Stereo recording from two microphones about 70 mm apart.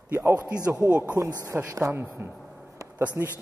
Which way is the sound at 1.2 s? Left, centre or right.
Left.